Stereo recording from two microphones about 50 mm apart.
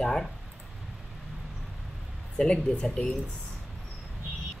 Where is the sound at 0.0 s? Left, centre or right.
Centre.